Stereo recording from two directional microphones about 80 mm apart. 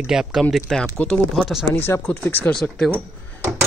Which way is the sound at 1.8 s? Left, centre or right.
Left.